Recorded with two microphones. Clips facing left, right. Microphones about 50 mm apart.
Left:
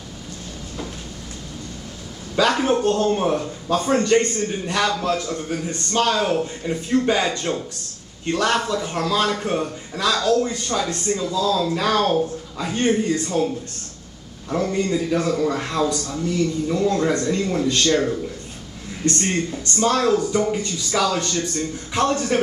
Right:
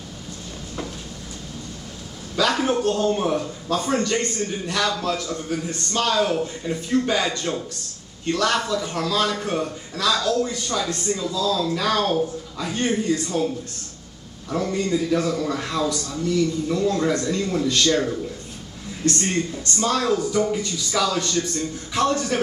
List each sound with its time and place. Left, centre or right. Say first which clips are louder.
2.3 s a sound: left 2 dB; centre
2.8 s speech: left 2 dB; left
3.1 s a man's voice: left 2 dB; centre
4.0 s a man's voice: left 5 dB; left
14.5 s a man's voice: left 1 dB; centre
19.3 s a man's voice: left 1 dB; centre